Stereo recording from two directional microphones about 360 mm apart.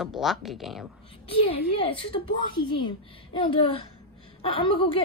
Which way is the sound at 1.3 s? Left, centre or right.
Centre.